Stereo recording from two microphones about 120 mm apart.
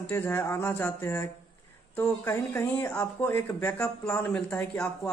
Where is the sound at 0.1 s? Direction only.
20° left (ahead or behind).